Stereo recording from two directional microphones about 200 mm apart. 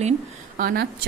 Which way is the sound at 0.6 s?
50° right (ahead or behind).